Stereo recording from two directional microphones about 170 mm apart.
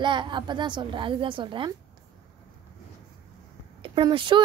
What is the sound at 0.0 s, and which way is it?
A woman's voice, 30° right (ahead or behind).